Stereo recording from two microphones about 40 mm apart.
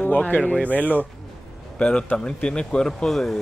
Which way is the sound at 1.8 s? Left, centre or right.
Left.